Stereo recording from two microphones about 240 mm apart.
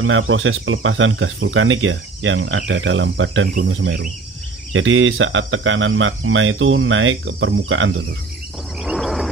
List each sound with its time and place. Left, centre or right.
0.0 s speech: right
8.8 s wild animals: centre